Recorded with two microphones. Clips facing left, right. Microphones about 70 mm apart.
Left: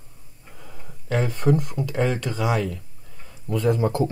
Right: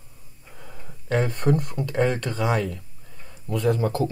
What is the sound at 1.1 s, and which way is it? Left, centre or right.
Speech, centre.